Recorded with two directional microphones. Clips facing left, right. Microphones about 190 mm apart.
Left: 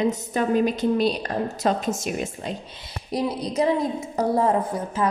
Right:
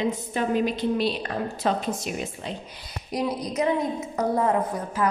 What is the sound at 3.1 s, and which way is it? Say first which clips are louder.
A woman's voice: left 2 dB; 30° left (ahead or behind).